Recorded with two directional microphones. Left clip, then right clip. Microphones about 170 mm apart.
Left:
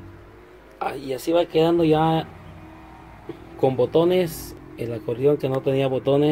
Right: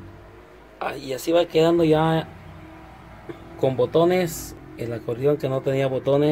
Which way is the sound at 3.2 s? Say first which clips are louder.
Left 2 dB; 10° left (ahead or behind).